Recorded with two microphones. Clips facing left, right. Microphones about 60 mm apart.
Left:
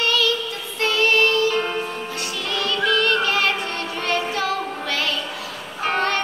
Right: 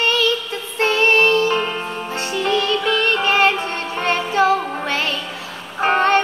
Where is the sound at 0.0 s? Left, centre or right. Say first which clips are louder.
Right 2 dB; right.